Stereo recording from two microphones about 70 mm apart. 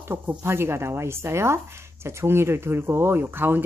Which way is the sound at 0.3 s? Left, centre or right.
Right.